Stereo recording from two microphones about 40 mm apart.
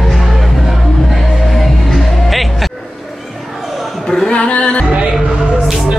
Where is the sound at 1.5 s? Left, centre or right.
Centre.